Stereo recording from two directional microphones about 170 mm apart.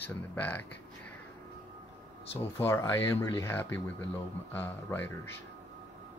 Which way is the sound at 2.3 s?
15° left (ahead or behind).